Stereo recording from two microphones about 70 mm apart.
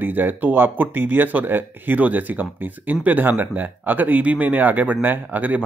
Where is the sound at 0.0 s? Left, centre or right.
Right.